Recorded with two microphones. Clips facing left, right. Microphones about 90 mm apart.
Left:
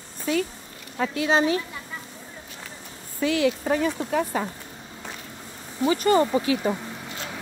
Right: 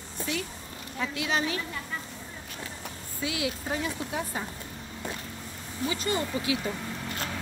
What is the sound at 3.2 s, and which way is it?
Speech, 55° left (ahead or behind).